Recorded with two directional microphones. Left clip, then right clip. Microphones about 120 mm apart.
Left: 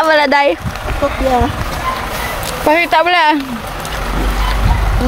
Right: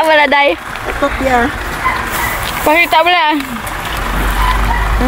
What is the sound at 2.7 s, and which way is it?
Speech, 25° left (ahead or behind).